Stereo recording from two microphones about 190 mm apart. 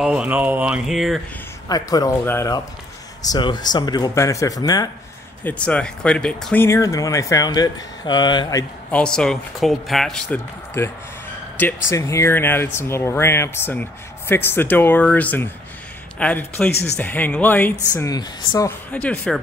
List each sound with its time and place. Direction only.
0.0 s speech: 5° right (ahead or behind)
1.7 s speech: 20° left (ahead or behind)
5.4 s speech: 5° left (ahead or behind)
8.9 s speech: 5° left (ahead or behind)
10.8 s speech: 15° left (ahead or behind)